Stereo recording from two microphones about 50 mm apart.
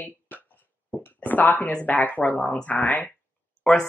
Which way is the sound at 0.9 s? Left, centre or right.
Left.